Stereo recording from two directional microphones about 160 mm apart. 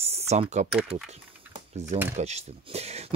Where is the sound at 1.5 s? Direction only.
40° right (ahead or behind).